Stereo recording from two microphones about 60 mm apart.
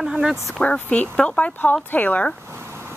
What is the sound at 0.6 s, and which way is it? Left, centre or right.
Speech, centre.